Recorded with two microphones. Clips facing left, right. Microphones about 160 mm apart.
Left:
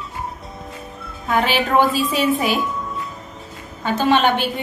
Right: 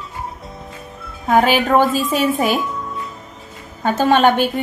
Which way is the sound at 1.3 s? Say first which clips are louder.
Right 4 dB; 45° right (ahead or behind).